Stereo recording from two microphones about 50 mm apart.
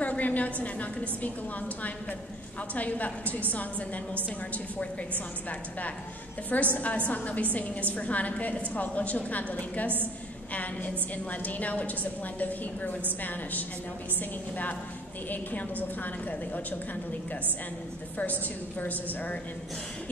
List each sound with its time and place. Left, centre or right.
0.0 s a woman's voice: left
2.7 s a woman's voice: left
6.5 s a woman's voice: left
16.0 s a woman's voice: left
18.1 s a woman's voice: left